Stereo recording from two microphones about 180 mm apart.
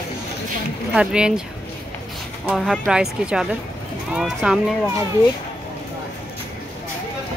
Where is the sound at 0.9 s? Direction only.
5° right (ahead or behind).